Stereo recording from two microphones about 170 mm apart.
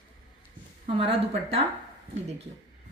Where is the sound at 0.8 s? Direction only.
35° right (ahead or behind).